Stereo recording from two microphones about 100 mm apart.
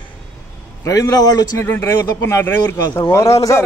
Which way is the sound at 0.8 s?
35° left (ahead or behind).